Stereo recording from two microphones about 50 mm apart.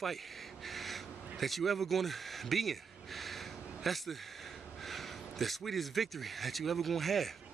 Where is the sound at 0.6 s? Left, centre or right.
Centre.